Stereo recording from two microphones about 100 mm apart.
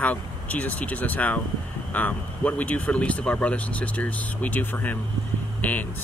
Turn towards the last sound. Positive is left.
turn(degrees=15)  # may be behind; listen again after turning